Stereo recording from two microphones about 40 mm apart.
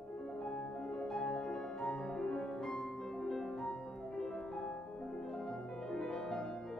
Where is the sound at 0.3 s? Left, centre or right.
Centre.